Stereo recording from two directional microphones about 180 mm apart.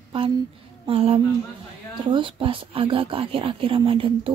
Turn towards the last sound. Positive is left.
turn(degrees=-30)  # may be behind; listen again after turning